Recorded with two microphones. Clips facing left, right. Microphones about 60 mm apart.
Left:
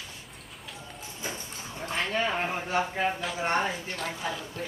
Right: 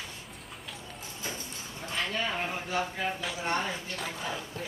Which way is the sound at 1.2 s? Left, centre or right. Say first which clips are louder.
Left 2 dB; centre.